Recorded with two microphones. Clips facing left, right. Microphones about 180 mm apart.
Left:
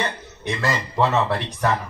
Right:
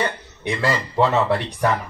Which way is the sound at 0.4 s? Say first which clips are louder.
Right 2 dB; 15° right (ahead or behind).